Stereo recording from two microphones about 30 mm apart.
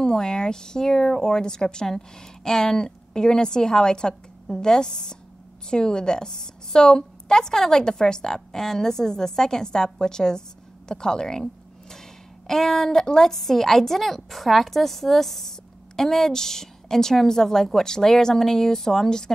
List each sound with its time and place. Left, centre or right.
0.1 s a woman's voice: left